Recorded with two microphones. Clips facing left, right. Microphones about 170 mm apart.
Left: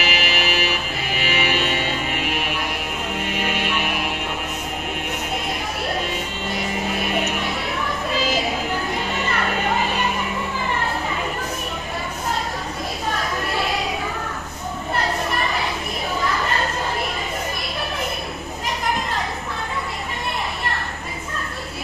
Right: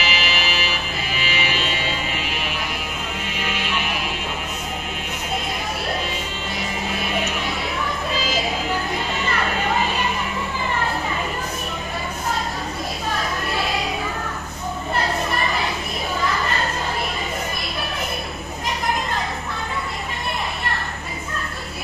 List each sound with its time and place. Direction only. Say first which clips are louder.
0.0 s music: left 2 dB; 60° left (ahead or behind)